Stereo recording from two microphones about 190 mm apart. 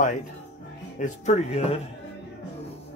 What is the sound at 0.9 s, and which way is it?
Speech, 40° left (ahead or behind).